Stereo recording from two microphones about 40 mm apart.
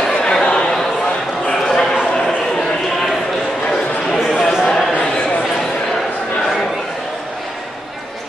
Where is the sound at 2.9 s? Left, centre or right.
Centre.